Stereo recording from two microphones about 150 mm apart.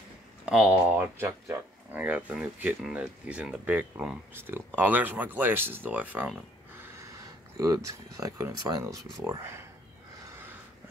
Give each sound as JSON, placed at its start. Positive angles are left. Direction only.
{"t": 0.5, "sound": "speech", "side_deg": -5}
{"t": 7.5, "sound": "speech", "side_deg": -20}